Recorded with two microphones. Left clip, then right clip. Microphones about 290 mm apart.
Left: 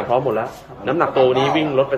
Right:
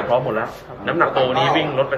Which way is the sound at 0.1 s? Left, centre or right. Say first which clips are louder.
Left 2 dB; left.